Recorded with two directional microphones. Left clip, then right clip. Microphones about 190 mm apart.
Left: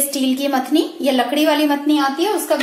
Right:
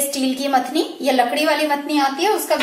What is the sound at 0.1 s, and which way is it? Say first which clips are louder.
A woman's voice: even; 30° left (ahead or behind).